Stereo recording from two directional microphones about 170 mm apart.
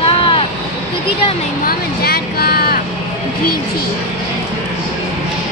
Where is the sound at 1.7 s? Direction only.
65° left (ahead or behind).